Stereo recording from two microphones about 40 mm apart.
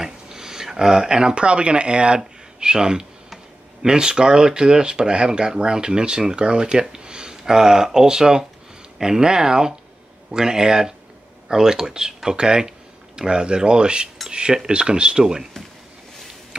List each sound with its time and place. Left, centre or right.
0.0 s speech: centre